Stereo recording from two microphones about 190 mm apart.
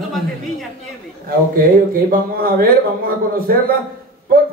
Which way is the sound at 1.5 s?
50° right (ahead or behind).